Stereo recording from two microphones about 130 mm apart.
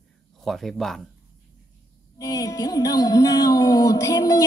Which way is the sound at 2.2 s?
25° left (ahead or behind).